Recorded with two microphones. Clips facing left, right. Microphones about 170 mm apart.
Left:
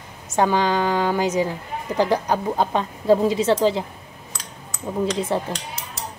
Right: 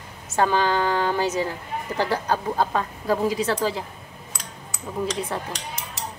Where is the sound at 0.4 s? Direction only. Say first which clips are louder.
Left 2 dB; 15° left (ahead or behind).